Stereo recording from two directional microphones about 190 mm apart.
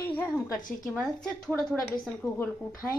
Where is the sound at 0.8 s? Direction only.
Centre (ahead or behind).